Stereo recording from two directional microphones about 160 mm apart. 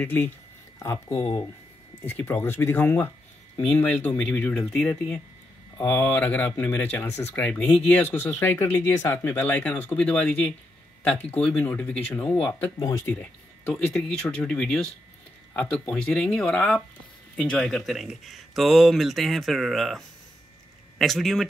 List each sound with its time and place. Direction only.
0.0 s speech: 10° left (ahead or behind)
1.1 s speech: 30° left (ahead or behind)
2.0 s speech: 15° left (ahead or behind)
21.0 s speech: centre (ahead or behind)